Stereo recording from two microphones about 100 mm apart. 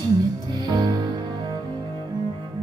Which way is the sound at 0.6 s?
45° right (ahead or behind).